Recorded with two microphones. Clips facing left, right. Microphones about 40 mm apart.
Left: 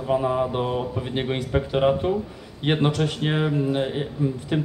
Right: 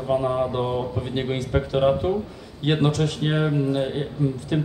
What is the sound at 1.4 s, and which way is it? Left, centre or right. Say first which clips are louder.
Speech: right 1 dB; centre.